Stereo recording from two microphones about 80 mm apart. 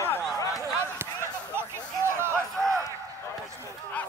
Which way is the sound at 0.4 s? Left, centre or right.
Left.